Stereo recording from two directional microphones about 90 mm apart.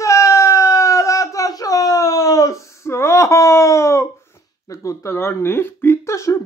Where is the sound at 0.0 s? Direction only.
35° left (ahead or behind).